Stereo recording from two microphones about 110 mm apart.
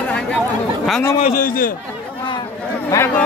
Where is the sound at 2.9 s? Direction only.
30° left (ahead or behind).